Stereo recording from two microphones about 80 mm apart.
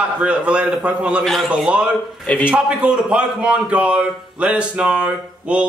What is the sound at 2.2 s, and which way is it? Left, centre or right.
Speech, centre.